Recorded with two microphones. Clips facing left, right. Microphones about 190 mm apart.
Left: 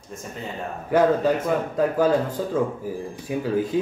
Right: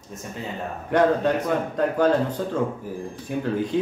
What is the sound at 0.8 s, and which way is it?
Speech, 5° left (ahead or behind).